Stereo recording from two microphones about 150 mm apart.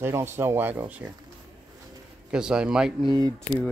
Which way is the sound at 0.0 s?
15° right (ahead or behind).